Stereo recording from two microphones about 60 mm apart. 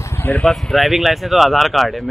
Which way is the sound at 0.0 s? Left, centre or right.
Left.